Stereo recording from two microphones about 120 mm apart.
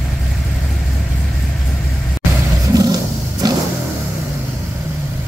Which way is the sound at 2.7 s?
30° right (ahead or behind).